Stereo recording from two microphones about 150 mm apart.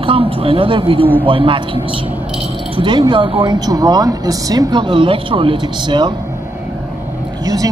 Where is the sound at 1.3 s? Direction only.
35° right (ahead or behind).